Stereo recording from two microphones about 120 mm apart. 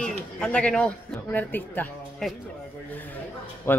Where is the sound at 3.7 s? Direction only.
20° left (ahead or behind).